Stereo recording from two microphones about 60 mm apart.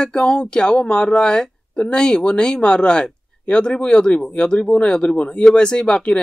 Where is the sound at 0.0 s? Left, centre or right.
Centre.